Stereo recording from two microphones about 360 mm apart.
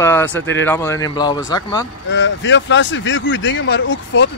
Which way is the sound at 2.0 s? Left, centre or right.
Left.